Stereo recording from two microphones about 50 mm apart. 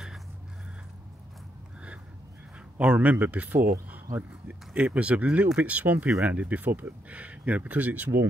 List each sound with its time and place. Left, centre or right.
2.8 s speech: right